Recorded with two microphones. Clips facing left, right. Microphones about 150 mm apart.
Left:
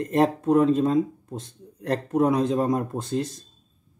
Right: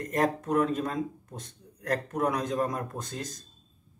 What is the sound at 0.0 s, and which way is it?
Speech, 25° left (ahead or behind).